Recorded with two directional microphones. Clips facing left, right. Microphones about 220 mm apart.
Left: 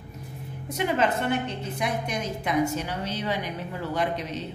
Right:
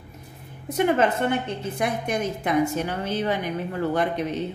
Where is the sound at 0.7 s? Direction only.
55° right (ahead or behind).